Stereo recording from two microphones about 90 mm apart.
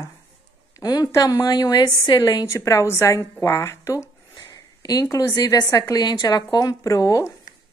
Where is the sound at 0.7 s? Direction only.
40° left (ahead or behind).